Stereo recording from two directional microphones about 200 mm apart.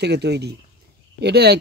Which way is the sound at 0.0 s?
55° right (ahead or behind).